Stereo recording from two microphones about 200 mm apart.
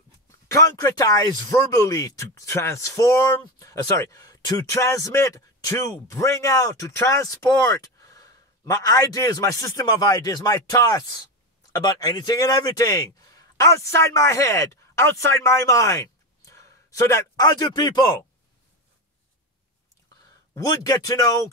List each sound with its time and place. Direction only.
0.5 s a man's voice: 15° left (ahead or behind)
20.5 s speech: 20° left (ahead or behind)